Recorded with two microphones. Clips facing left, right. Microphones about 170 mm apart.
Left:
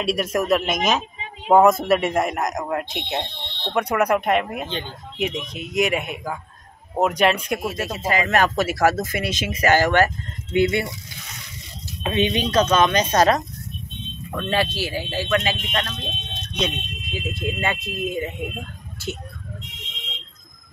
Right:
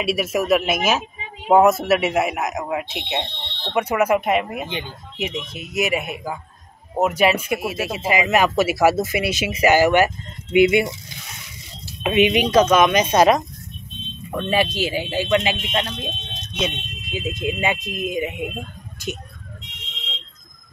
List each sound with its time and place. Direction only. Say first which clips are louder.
0.0 s speech: right 1 dB; 5° right (ahead or behind)
12.0 s speech: right 4 dB; 15° right (ahead or behind)
16.5 s speech: even; centre (ahead or behind)
17.1 s speech: right 3 dB; 20° right (ahead or behind)